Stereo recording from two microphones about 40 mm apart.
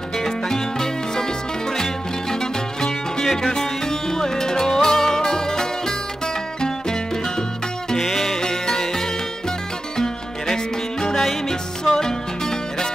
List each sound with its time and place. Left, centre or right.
0.2 s music: centre
8.0 s music: centre